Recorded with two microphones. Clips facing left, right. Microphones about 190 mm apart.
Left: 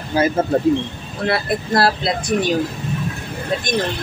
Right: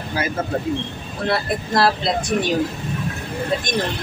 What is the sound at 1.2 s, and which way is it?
A man's voice, 5° left (ahead or behind).